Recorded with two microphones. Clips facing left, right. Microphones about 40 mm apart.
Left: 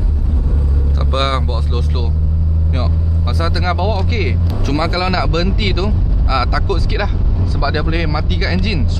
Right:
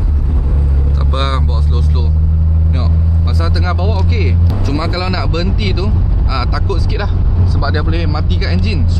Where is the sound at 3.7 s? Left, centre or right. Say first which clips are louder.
Left 1 dB; centre.